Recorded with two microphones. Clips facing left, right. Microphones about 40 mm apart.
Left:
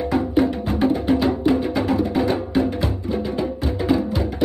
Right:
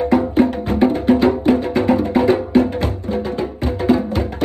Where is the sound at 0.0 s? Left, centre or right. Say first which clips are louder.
Right 4 dB; right.